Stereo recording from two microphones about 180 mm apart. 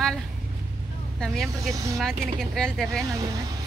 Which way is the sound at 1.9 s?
Centre (ahead or behind).